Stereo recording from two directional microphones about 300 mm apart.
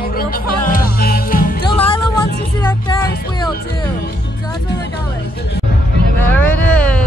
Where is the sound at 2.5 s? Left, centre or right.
Centre.